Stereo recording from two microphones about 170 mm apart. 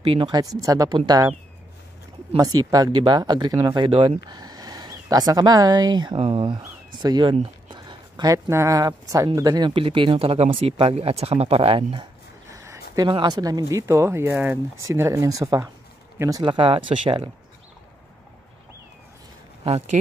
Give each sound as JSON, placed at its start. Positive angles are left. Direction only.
{"t": 0.0, "sound": "speech", "side_deg": -30}
{"t": 2.3, "sound": "speech", "side_deg": -20}
{"t": 12.4, "sound": "a sound", "side_deg": -20}
{"t": 12.9, "sound": "speech", "side_deg": -25}
{"t": 19.6, "sound": "speech", "side_deg": -35}